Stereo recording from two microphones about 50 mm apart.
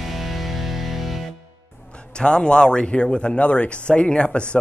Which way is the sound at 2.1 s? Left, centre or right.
Centre.